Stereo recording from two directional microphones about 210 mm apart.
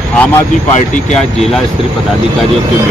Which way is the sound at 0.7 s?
35° left (ahead or behind).